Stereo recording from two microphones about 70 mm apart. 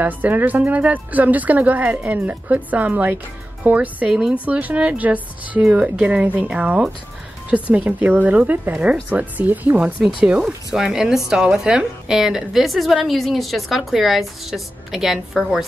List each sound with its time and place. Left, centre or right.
0.0 s speech: right
4.1 s speech: centre
4.5 s a woman's voice: right; by 15.6 s centre